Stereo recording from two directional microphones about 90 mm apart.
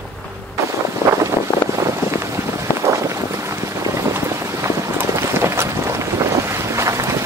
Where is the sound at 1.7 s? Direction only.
30° right (ahead or behind).